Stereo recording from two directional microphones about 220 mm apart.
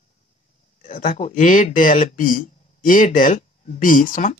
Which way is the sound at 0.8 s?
35° left (ahead or behind).